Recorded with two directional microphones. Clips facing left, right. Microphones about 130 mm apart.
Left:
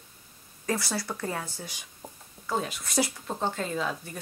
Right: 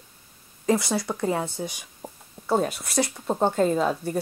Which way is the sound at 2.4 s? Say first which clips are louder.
Right 7 dB; 40° right (ahead or behind).